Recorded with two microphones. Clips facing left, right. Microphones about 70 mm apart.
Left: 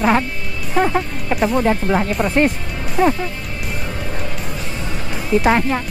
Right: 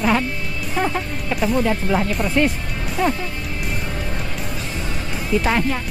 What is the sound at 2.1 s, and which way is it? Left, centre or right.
Speech, centre.